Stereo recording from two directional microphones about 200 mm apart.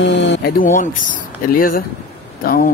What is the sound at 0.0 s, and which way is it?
A man's voice, 65° left (ahead or behind).